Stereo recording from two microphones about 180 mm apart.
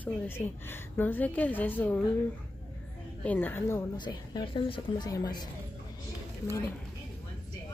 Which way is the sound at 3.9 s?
25° left (ahead or behind).